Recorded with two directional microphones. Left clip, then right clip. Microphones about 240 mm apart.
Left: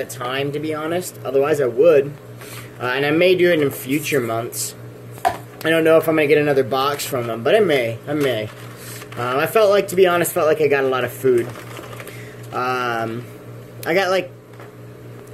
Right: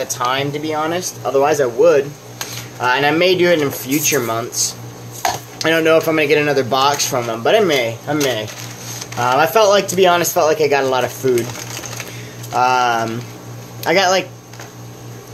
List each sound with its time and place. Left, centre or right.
0.1 s speech: centre
5.6 s speech: centre
9.3 s speech: centre
12.5 s speech: centre